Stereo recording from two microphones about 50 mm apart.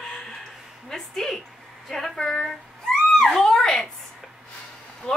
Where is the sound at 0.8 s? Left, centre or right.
Centre.